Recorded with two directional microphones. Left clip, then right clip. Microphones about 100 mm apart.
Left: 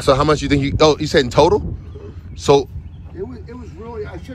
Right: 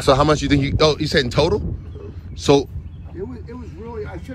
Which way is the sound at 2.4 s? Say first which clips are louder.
Left 2 dB; 15° right (ahead or behind).